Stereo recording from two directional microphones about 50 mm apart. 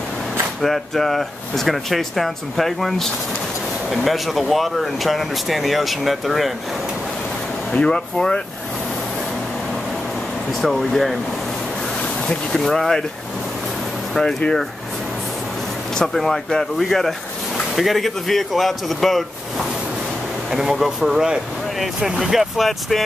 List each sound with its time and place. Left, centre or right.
0.6 s speech: centre
7.7 s speech: centre
10.6 s speech: centre
12.3 s speech: centre
14.4 s speech: centre
16.0 s speech: centre
20.5 s speech: centre